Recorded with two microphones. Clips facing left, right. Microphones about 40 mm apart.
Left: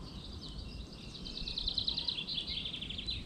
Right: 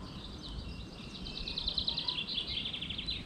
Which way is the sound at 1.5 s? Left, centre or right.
Centre.